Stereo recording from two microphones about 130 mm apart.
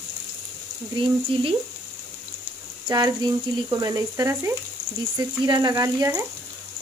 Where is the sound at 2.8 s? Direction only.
30° right (ahead or behind).